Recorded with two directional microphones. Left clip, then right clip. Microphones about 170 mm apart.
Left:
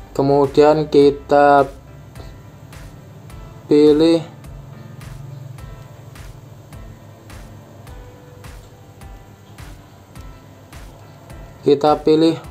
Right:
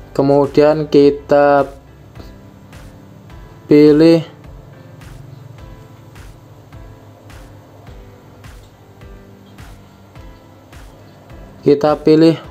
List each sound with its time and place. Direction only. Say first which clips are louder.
0.1 s speech: right 3 dB; 20° right (ahead or behind)
3.6 s speech: right 4 dB; 20° right (ahead or behind)
11.6 s speech: right 2 dB; 20° right (ahead or behind)